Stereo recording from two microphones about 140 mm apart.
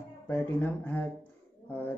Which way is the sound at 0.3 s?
10° left (ahead or behind).